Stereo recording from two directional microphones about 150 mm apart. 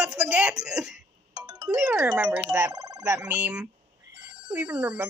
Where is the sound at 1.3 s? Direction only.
25° right (ahead or behind).